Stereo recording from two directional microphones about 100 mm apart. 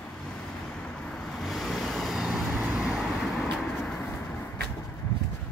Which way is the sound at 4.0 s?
20° left (ahead or behind).